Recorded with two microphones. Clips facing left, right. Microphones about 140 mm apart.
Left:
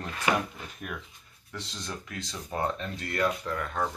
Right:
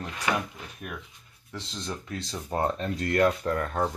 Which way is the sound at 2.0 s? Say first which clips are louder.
Right 4 dB; 35° right (ahead or behind).